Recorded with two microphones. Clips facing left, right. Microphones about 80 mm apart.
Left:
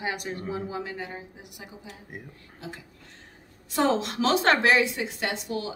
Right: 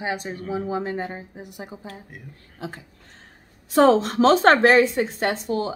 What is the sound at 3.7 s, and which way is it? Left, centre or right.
Speech, right.